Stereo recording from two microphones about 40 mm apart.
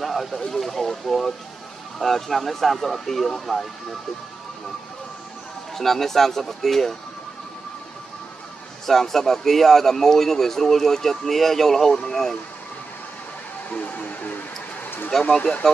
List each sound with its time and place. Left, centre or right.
0.0 s speech: centre
5.8 s a man's voice: centre
8.8 s a man's voice: centre
13.7 s speech: left
15.1 s a man's voice: centre